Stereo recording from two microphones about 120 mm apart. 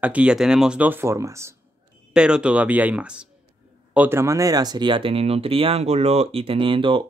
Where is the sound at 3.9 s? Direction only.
20° right (ahead or behind); by 7.0 s 45° right (ahead or behind).